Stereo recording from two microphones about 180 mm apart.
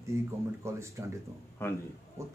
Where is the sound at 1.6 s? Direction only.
15° left (ahead or behind).